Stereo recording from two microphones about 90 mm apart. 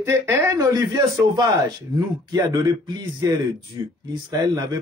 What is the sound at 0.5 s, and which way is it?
A man's voice, 40° right (ahead or behind).